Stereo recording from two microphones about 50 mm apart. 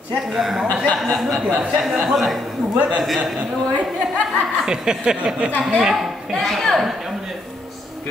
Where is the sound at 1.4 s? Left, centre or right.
Centre.